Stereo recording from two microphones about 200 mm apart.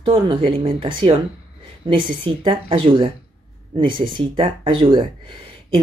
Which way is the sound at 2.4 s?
25° right (ahead or behind).